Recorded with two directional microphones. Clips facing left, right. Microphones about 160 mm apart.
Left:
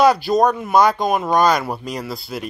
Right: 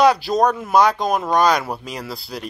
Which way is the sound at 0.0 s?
Centre (ahead or behind).